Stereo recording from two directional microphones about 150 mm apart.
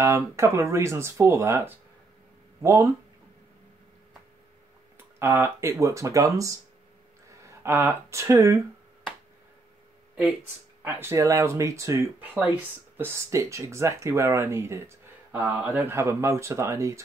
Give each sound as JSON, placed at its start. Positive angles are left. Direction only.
{"t": 0.0, "sound": "speech", "side_deg": -20}
{"t": 5.2, "sound": "speech", "side_deg": -15}
{"t": 7.6, "sound": "speech", "side_deg": -15}
{"t": 10.8, "sound": "speech", "side_deg": -15}